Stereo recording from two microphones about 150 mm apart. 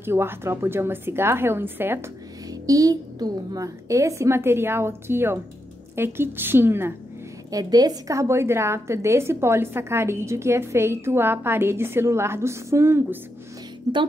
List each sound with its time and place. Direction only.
0.0 s a woman's voice: 15° right (ahead or behind)
7.5 s a woman's voice: 25° right (ahead or behind)
13.9 s a woman's voice: 30° right (ahead or behind)